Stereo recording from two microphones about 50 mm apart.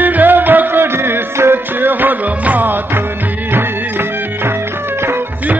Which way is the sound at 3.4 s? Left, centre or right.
Right.